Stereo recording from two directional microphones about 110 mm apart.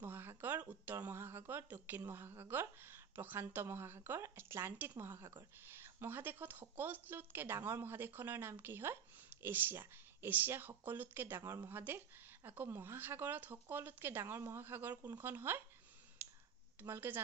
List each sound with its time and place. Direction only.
0.0 s a sound: 20° right (ahead or behind)
1.5 s a woman's voice: 20° right (ahead or behind)
16.8 s a woman's voice: 20° right (ahead or behind)